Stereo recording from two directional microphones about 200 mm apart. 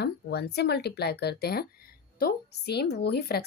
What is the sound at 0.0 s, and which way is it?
Speech, 55° left (ahead or behind).